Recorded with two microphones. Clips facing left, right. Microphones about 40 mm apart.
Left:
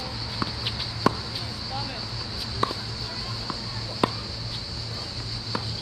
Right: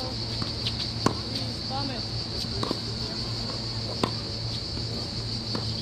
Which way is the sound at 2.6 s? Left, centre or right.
Left.